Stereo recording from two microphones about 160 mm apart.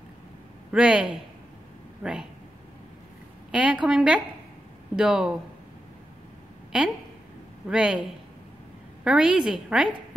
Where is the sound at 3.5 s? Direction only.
5° right (ahead or behind).